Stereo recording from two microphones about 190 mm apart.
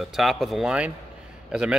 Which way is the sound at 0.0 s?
Centre (ahead or behind).